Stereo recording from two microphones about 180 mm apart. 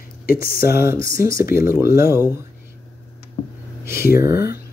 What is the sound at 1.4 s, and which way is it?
Speech, 55° left (ahead or behind).